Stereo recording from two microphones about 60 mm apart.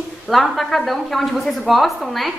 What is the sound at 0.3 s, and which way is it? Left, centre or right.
A woman's voice, centre.